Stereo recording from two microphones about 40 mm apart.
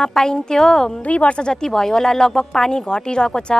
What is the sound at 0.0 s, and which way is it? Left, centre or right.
Speech, centre.